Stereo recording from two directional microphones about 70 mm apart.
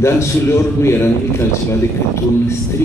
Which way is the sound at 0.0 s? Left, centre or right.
Left.